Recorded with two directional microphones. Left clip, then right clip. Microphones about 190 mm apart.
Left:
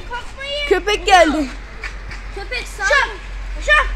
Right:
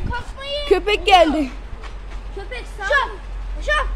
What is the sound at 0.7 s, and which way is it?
Speech, 10° right (ahead or behind).